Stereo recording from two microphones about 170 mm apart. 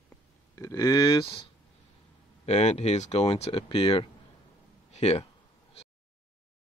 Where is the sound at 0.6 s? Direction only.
20° left (ahead or behind).